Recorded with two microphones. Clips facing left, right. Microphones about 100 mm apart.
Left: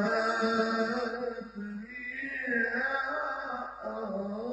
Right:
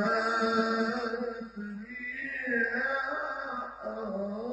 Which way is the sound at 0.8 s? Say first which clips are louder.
Even; centre (ahead or behind).